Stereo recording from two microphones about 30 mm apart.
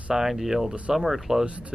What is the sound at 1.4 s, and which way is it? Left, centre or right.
Speech, right.